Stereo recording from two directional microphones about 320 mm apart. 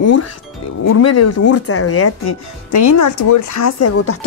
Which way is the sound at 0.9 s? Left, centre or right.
Left.